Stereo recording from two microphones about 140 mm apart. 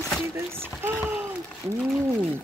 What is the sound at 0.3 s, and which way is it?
Speech, 15° right (ahead or behind).